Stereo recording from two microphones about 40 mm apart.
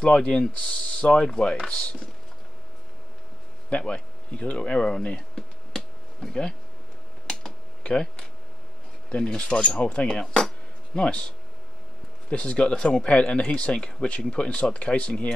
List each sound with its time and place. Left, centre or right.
0.0 s speech: left
3.7 s speech: left
5.3 s a sound: centre
9.3 s speech: left
11.0 s speech: left